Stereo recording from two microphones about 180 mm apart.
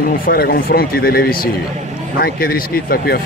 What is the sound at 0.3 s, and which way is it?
Speech, 60° left (ahead or behind).